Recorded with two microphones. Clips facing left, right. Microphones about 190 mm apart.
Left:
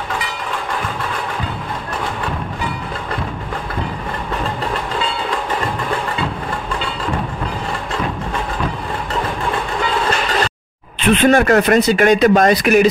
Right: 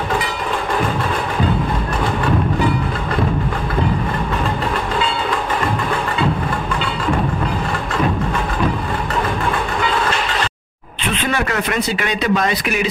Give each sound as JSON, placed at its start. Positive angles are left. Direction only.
{"t": 11.1, "sound": "speech", "side_deg": 50}